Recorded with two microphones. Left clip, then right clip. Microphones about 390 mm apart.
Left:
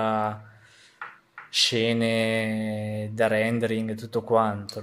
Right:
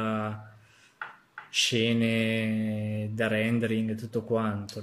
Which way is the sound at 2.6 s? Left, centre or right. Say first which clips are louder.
Left 3 dB; left.